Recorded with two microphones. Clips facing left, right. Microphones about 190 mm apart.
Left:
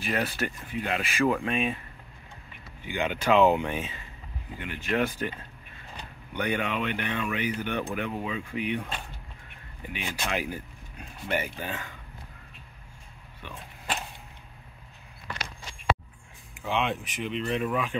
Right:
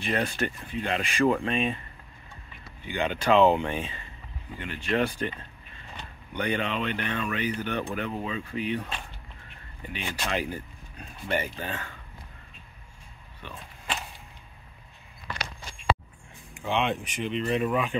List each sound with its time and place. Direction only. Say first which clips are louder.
0.0 s speech: right 1 dB; 5° left (ahead or behind)
2.8 s speech: right 1 dB; 10° left (ahead or behind)
6.3 s speech: even; 10° left (ahead or behind)
9.8 s speech: even; 10° left (ahead or behind)
16.5 s speech: right 1 dB; 5° left (ahead or behind)